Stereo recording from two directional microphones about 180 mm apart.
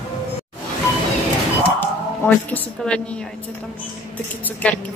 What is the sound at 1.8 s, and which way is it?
Speech, 10° left (ahead or behind).